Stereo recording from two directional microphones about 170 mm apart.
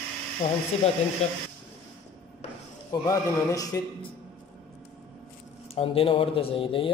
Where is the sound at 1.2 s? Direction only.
40° left (ahead or behind).